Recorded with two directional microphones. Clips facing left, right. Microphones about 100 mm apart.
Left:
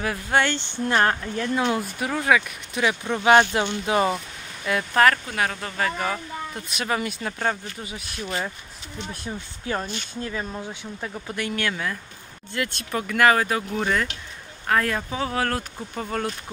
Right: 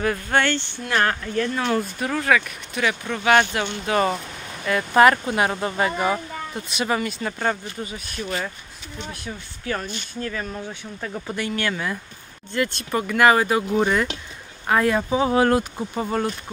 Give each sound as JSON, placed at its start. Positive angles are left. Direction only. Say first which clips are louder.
{"t": 0.0, "sound": "speech", "louder": "right 1 dB", "side_deg": 5}
{"t": 0.8, "sound": "speech", "louder": "left 1 dB", "side_deg": 25}
{"t": 1.3, "sound": "speech", "louder": "right 1 dB", "side_deg": 15}
{"t": 4.9, "sound": "speech", "louder": "right 4 dB", "side_deg": -15}
{"t": 5.2, "sound": "speech", "louder": "right 5 dB", "side_deg": -25}
{"t": 6.5, "sound": "speech", "louder": "right 3 dB", "side_deg": 0}
{"t": 9.1, "sound": "speech", "louder": "left 1 dB", "side_deg": 25}
{"t": 11.2, "sound": "speech", "louder": "right 2 dB", "side_deg": 0}